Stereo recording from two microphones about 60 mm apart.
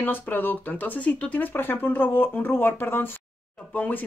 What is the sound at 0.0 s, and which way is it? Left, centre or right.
Speech, left.